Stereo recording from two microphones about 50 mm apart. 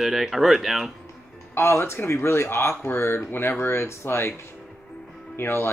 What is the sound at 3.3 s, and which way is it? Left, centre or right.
Speech, left.